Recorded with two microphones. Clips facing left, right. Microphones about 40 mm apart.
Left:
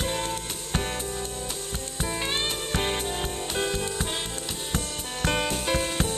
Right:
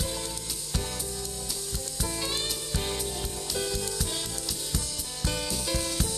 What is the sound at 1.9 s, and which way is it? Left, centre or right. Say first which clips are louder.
Music: left 4 dB; left.